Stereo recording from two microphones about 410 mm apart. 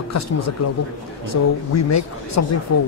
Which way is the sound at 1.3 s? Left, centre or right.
Left.